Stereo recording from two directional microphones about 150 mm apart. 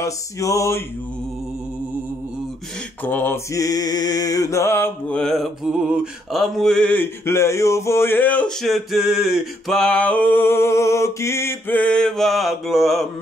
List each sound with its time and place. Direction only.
0.0 s mantra: 20° left (ahead or behind)
3.0 s mantra: 10° left (ahead or behind)
5.2 s mantra: centre (ahead or behind)